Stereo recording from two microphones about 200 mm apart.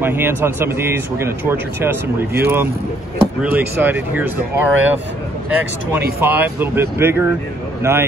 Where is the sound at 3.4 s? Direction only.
10° right (ahead or behind).